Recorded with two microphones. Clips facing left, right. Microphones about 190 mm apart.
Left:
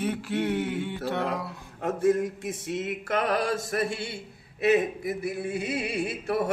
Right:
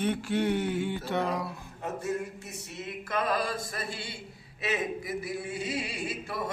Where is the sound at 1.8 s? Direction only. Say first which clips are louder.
Left 9 dB; 90° left.